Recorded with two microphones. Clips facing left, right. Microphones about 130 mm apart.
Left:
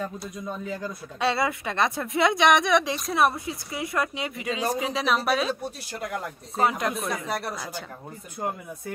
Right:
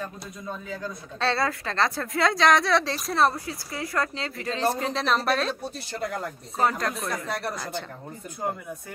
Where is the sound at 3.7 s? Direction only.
20° left (ahead or behind).